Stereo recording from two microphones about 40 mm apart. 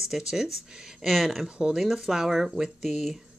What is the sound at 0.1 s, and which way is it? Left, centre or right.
Speech, centre.